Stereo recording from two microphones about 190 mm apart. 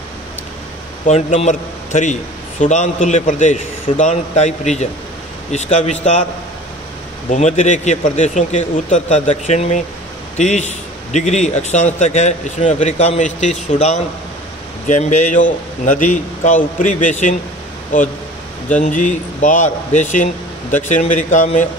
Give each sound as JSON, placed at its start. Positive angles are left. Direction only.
{"t": 1.0, "sound": "a man's voice", "side_deg": 35}
{"t": 7.2, "sound": "a man's voice", "side_deg": 40}
{"t": 18.8, "sound": "a man's voice", "side_deg": 40}